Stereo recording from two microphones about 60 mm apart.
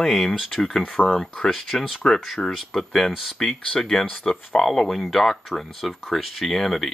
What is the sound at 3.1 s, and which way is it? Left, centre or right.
Speech, centre.